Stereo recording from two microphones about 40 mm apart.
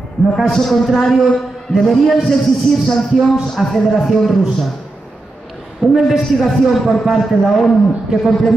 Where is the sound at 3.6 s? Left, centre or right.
Centre.